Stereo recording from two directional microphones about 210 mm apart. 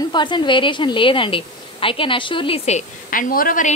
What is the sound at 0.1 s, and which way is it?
A woman's voice, 20° left (ahead or behind).